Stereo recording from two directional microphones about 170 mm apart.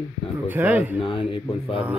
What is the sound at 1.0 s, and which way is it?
Speech, 30° left (ahead or behind).